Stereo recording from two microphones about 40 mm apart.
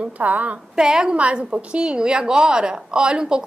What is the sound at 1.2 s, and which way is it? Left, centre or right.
A woman's voice, right.